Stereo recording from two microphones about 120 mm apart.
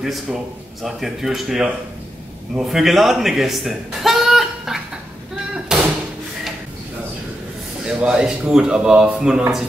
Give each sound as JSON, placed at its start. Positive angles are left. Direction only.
{"t": 0.0, "sound": "a man's voice", "side_deg": -5}
{"t": 5.7, "sound": "door", "side_deg": -5}
{"t": 7.8, "sound": "a man's voice", "side_deg": -5}